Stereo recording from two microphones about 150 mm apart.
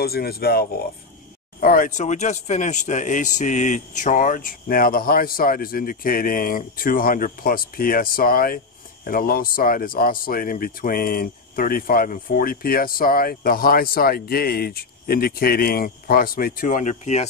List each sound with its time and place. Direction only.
0.0 s speech: 90° left
1.6 s speech: 70° left (ahead or behind); by 17.3 s 50° left (ahead or behind)